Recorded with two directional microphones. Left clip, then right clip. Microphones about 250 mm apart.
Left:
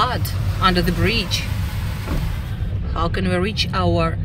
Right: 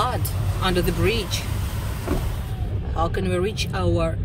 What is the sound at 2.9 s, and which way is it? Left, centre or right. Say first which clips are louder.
Speech: left 2 dB; centre.